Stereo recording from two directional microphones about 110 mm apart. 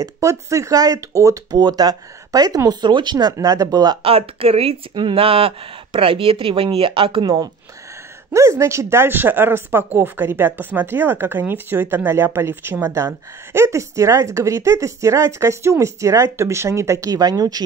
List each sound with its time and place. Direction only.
0.0 s speech: 30° right (ahead or behind); by 3.3 s 45° right (ahead or behind)
3.3 s speech: 30° right (ahead or behind)
4.0 s speech: 60° right (ahead or behind)
4.9 s speech: 50° right (ahead or behind)
8.3 s speech: 25° right (ahead or behind)